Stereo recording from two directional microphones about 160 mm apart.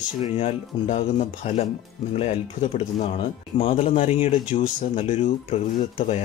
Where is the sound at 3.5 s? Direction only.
35° left (ahead or behind).